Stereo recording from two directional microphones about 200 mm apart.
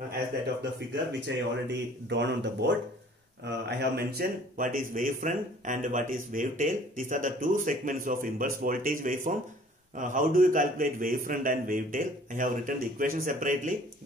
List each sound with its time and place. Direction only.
0.7 s a man's voice: 60° right (ahead or behind); by 13.7 s 40° right (ahead or behind)